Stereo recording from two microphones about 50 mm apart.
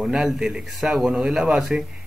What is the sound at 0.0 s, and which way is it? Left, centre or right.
Speech, centre.